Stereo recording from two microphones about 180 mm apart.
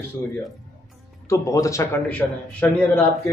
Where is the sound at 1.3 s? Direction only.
20° left (ahead or behind).